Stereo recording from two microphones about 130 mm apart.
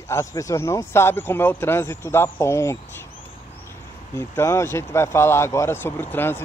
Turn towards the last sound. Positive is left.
turn(degrees=15)  # may be behind; listen again after turning